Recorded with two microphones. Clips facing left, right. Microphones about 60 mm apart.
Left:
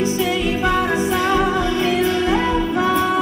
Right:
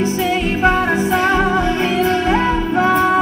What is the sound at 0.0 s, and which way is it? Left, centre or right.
Music, right.